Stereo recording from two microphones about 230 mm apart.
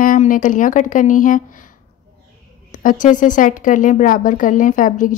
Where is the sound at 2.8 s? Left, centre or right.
Left.